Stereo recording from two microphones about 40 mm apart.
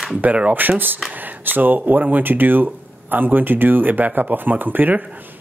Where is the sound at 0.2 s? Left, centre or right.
Right.